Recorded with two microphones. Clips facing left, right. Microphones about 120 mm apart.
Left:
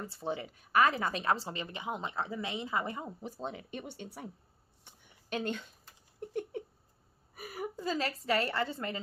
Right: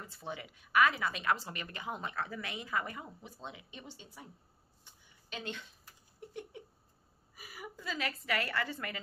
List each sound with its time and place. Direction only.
0.3 s a woman's voice: 35° left (ahead or behind)
3.8 s a woman's voice: 60° left (ahead or behind)
4.8 s a sound: 55° left (ahead or behind)
7.3 s whimper: 55° left (ahead or behind)
7.7 s a woman's voice: 35° left (ahead or behind)